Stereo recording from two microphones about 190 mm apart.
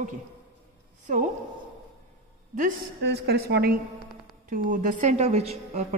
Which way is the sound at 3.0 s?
60° right (ahead or behind).